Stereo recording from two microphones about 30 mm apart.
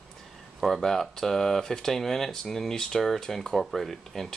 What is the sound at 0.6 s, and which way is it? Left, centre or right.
Speech, centre.